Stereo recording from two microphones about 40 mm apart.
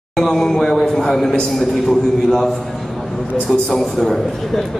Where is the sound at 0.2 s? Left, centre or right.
Centre.